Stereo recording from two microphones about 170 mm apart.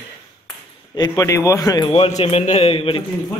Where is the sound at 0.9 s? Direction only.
20° left (ahead or behind).